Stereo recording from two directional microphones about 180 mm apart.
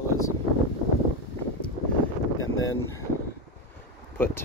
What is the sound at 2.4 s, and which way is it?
Wind noise, 90° left.